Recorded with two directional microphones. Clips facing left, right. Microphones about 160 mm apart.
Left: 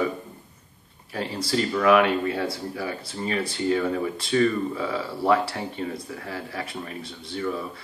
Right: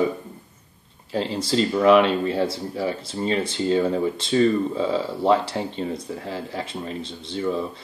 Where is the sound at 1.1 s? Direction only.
25° right (ahead or behind).